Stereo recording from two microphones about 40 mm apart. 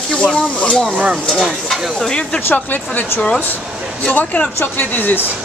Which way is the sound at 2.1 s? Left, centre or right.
Left.